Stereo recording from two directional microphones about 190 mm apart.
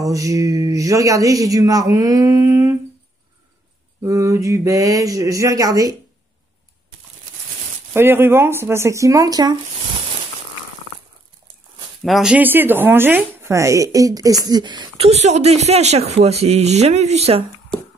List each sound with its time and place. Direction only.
0.0 s speech: 15° right (ahead or behind)
4.0 s speech: 15° right (ahead or behind)
7.9 s speech: 10° right (ahead or behind)
12.0 s speech: centre (ahead or behind); by 17.5 s 30° right (ahead or behind)